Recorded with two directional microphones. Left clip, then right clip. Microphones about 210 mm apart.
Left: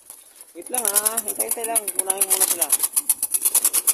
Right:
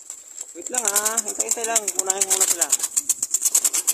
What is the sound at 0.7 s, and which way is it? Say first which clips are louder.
Speech: right 2 dB; centre (ahead or behind).